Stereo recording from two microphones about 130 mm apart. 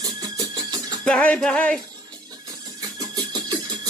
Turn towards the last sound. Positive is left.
turn(degrees=-35)  # may be behind; listen again after turning